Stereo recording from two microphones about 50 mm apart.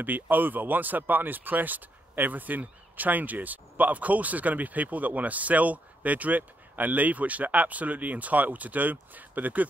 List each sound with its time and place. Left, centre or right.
0.0 s speech: right